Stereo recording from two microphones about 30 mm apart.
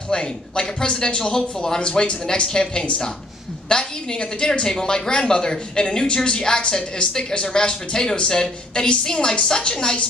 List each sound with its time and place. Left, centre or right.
0.1 s speech: left